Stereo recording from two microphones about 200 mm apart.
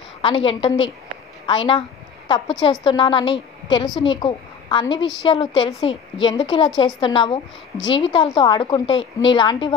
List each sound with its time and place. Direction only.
0.2 s a woman's voice: 25° left (ahead or behind)
1.4 s a sound: 25° left (ahead or behind)
2.6 s a woman's voice: 20° left (ahead or behind)